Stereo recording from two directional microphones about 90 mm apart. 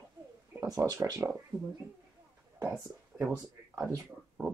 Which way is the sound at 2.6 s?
35° right (ahead or behind).